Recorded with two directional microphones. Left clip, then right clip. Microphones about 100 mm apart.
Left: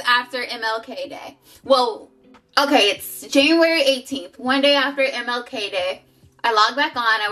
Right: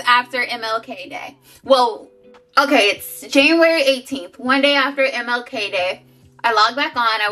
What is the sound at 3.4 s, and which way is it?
A woman's voice, 15° left (ahead or behind).